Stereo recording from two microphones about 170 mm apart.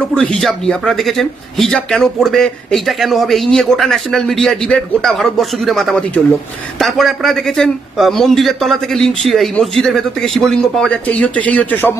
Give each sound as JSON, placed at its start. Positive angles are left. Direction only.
{"t": 0.0, "sound": "a man's voice", "side_deg": 5}